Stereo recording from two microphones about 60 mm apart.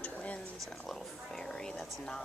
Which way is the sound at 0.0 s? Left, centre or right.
Left.